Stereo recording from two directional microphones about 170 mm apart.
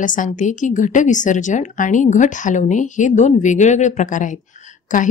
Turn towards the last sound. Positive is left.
turn(degrees=50)  # may be behind; listen again after turning